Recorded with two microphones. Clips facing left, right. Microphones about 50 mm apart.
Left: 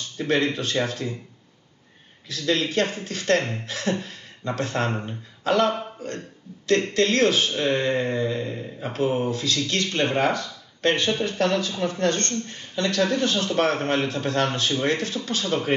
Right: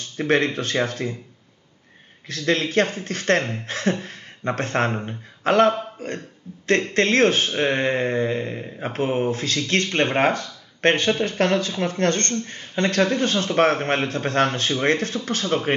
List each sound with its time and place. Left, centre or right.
0.2 s speech: right
2.2 s speech: right